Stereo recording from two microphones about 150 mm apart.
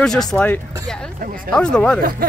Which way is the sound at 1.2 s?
70° right (ahead or behind).